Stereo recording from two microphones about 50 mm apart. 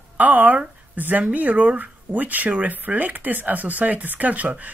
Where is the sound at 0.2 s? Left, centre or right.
Right.